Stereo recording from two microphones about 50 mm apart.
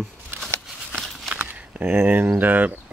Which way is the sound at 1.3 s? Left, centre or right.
Right.